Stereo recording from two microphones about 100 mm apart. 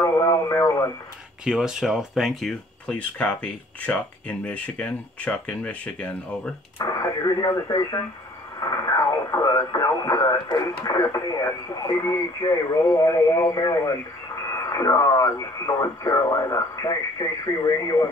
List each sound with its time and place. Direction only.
0.0 s radio: 35° left (ahead or behind)
1.4 s speech: 5° right (ahead or behind)
2.9 s speech: 15° left (ahead or behind)
6.8 s speech: 35° left (ahead or behind)